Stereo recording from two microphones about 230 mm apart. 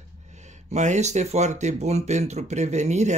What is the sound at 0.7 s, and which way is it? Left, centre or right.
Speech, right.